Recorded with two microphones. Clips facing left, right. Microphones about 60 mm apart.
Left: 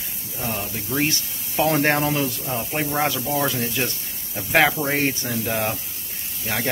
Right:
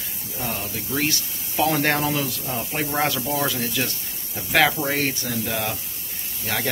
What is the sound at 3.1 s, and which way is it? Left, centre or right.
Speech, centre.